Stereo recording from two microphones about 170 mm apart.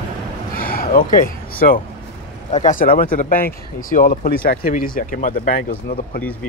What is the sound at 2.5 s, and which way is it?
Speech, 45° left (ahead or behind).